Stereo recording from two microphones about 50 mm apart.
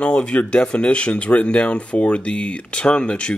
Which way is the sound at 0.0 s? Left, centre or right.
Left.